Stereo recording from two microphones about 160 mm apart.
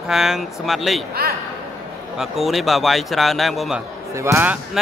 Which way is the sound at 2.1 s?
Centre (ahead or behind).